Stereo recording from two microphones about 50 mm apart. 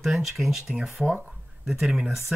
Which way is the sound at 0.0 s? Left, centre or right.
Centre.